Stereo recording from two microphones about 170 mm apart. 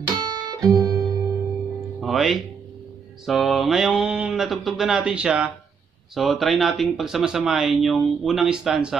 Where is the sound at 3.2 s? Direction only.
Centre (ahead or behind).